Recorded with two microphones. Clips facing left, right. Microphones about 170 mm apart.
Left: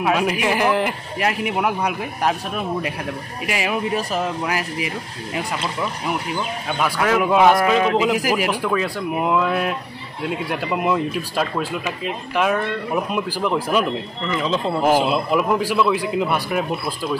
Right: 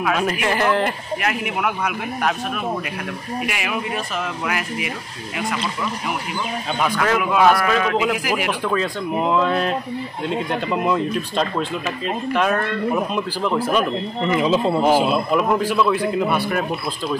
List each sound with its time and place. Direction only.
0.1 s speech: 15° left (ahead or behind)
1.2 s speech: 30° left (ahead or behind)
3.4 s speech: 30° left (ahead or behind)
6.8 s speech: 10° left (ahead or behind)
7.2 s a man's voice: 25° left (ahead or behind)
8.2 s speech: 40° left (ahead or behind)
8.5 s speech: 10° left (ahead or behind)
14.2 s speech: 10° right (ahead or behind)
15.0 s speech: 10° left (ahead or behind)